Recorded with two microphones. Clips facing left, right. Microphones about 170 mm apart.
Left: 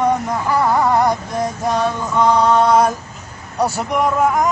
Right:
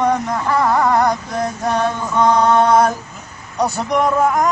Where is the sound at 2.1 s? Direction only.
10° left (ahead or behind).